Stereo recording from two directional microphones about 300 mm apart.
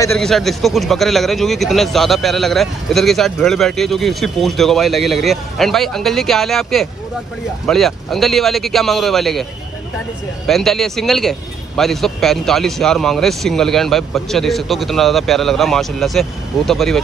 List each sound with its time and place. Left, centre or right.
0.0 s speech: centre